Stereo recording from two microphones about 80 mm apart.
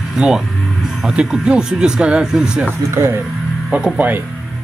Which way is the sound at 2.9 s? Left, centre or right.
Right.